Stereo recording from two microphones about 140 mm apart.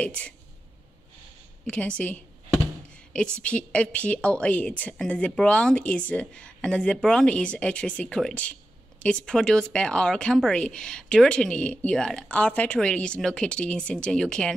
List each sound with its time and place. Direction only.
0.0 s a woman's voice: 10° left (ahead or behind)
1.7 s a woman's voice: 10° left (ahead or behind)